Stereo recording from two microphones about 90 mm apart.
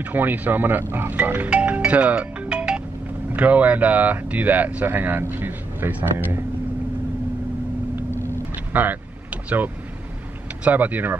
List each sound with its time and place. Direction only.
0.0 s speech: 20° right (ahead or behind)
8.7 s speech: 20° right (ahead or behind)